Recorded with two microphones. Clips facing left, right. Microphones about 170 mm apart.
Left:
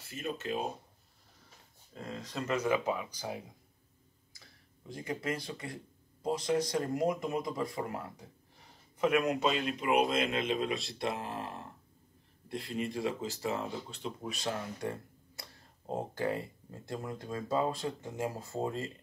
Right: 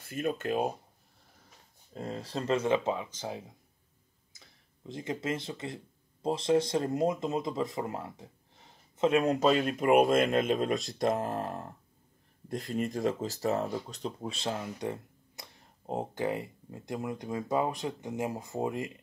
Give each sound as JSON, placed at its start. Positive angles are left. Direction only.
{"t": 0.0, "sound": "speech", "side_deg": -55}
{"t": 2.0, "sound": "speech", "side_deg": -35}
{"t": 4.3, "sound": "a sound", "side_deg": -20}
{"t": 6.2, "sound": "speech", "side_deg": -25}